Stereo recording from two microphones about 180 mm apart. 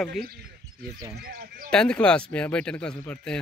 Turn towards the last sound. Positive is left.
turn(degrees=5)  # may be behind; listen again after turning